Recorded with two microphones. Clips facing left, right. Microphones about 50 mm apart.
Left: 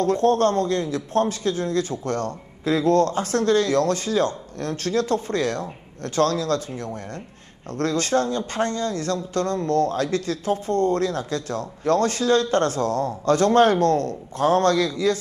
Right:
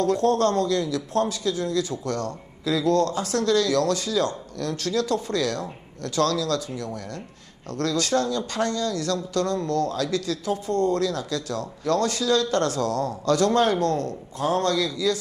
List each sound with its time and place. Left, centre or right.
0.0 s speech: left